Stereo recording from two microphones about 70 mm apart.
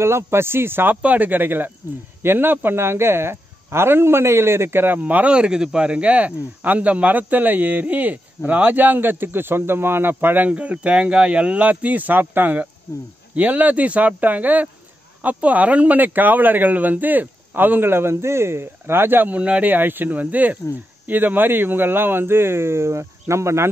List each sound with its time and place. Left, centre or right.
0.0 s speech: right
12.9 s speech: left
13.3 s speech: right